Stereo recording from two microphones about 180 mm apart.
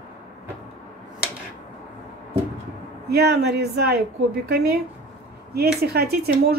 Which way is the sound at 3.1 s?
65° right (ahead or behind).